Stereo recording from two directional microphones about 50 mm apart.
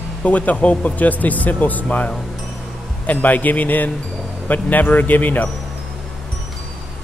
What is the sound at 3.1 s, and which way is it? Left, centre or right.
Speech, left.